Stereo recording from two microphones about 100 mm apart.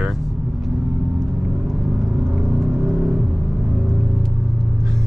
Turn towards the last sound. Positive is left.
turn(degrees=0)  # may be behind; listen again after turning